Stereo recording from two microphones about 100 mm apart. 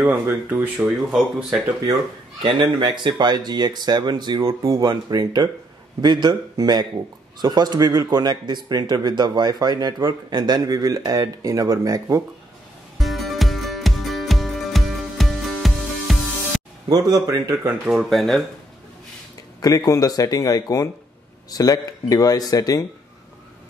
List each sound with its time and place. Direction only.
0.1 s speech: 25° right (ahead or behind)
0.8 s speech: 5° right (ahead or behind)
2.4 s speech: 50° right (ahead or behind); by 12.2 s 35° right (ahead or behind)
13.0 s music: centre (ahead or behind)
16.9 s speech: 35° right (ahead or behind)
17.8 s speech: centre (ahead or behind)
19.6 s speech: 35° left (ahead or behind)